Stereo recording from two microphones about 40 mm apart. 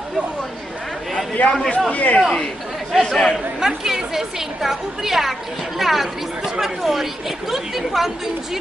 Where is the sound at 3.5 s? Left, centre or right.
Centre.